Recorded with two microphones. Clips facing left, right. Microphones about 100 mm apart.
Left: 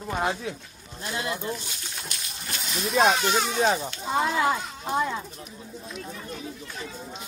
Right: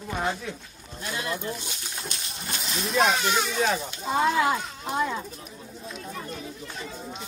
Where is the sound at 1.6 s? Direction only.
20° right (ahead or behind).